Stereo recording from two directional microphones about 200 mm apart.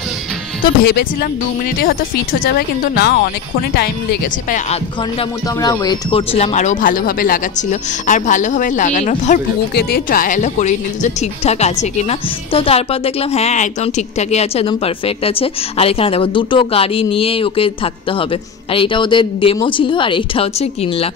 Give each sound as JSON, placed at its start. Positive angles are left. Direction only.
{"t": 0.8, "sound": "speech", "side_deg": 50}
{"t": 2.4, "sound": "speech", "side_deg": 50}
{"t": 5.6, "sound": "speech", "side_deg": 20}
{"t": 9.8, "sound": "a woman's voice", "side_deg": 50}